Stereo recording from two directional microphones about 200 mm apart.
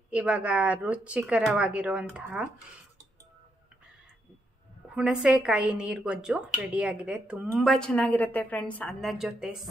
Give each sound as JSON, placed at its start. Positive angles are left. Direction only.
{"t": 0.1, "sound": "a woman's voice", "side_deg": -5}
{"t": 4.9, "sound": "a woman's voice", "side_deg": -5}